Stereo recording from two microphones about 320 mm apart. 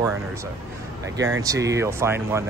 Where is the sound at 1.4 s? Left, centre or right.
Centre.